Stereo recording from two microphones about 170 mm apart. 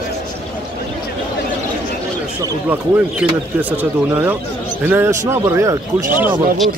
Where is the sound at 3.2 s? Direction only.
5° right (ahead or behind).